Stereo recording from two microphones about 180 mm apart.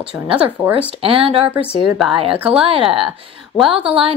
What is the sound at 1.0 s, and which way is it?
Speech, 30° right (ahead or behind).